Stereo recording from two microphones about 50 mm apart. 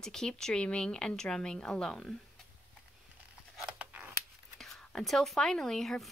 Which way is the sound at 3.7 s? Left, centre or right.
Right.